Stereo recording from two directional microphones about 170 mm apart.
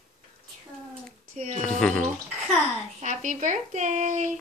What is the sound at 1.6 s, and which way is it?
Speech, 5° left (ahead or behind).